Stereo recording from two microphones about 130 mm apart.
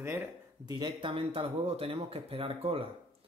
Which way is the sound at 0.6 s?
35° right (ahead or behind).